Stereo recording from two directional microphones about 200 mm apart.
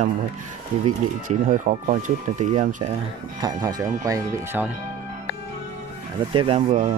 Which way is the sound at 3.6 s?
15° right (ahead or behind).